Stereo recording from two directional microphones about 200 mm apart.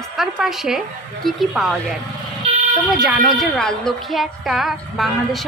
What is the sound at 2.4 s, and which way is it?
Vehicle, 30° right (ahead or behind).